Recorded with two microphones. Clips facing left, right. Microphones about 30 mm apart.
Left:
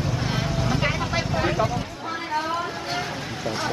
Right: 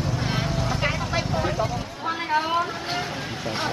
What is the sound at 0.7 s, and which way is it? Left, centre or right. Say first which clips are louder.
Vehicle: left 1 dB; centre.